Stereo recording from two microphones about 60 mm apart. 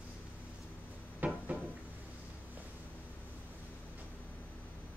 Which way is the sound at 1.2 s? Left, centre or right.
Right.